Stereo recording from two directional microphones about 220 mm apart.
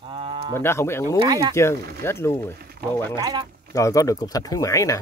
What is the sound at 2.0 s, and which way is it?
Speech, 10° left (ahead or behind).